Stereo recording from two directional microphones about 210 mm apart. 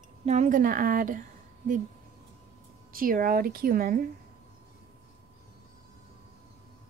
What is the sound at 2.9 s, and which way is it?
A woman's voice, 40° right (ahead or behind).